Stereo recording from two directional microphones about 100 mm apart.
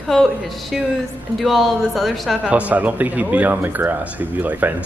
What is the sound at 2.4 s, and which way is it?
Speech, 15° right (ahead or behind).